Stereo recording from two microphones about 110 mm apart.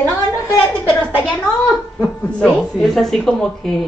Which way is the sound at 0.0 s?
20° left (ahead or behind).